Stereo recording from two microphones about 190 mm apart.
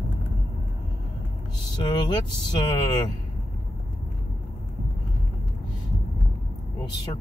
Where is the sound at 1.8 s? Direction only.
25° left (ahead or behind).